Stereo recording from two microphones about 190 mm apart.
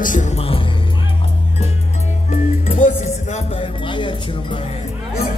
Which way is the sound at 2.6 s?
40° left (ahead or behind).